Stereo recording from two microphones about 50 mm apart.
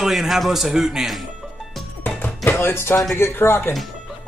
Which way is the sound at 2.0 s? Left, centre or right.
Left.